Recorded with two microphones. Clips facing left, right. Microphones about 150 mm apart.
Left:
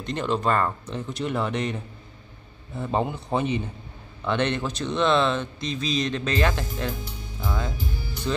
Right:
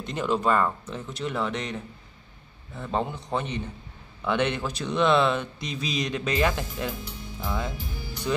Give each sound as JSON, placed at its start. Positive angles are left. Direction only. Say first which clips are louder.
{"t": 0.0, "sound": "a man's voice", "louder": "even", "side_deg": -5}
{"t": 4.2, "sound": "speech", "louder": "left 1 dB", "side_deg": -10}
{"t": 7.4, "sound": "music", "louder": "left 1 dB", "side_deg": -5}